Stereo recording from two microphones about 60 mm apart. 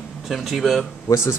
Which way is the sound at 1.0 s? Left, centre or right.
Left.